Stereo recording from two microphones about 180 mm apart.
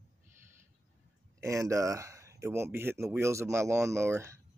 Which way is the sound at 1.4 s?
15° right (ahead or behind).